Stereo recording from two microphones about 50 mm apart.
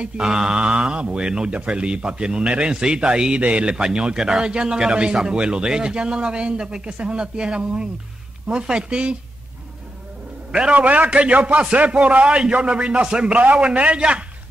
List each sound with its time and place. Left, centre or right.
0.0 s a man's voice: centre
10.5 s a man's voice: right